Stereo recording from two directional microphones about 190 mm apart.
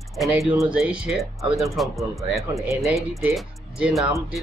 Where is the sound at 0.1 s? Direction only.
Centre (ahead or behind).